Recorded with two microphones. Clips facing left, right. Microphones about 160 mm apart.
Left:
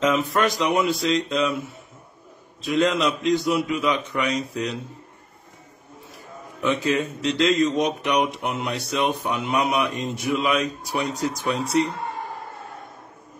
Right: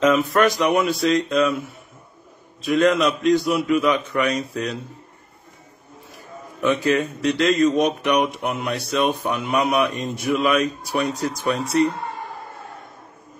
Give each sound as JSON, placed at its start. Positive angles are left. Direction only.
{"t": 0.0, "sound": "a man's voice", "side_deg": 20}
{"t": 2.6, "sound": "a man's voice", "side_deg": 20}
{"t": 6.6, "sound": "a man's voice", "side_deg": 15}